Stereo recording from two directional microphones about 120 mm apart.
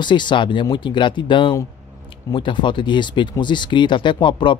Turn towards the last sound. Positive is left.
turn(degrees=40)  # may be behind; listen again after turning